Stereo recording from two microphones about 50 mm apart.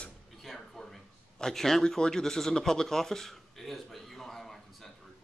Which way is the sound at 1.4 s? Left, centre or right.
Centre.